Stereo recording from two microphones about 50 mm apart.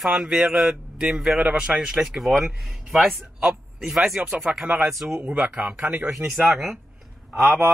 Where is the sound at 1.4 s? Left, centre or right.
Right.